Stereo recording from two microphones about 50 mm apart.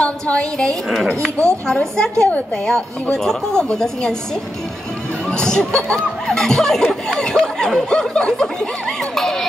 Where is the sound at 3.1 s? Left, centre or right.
Centre.